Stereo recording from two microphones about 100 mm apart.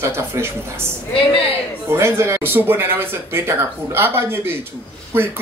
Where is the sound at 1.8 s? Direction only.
25° right (ahead or behind).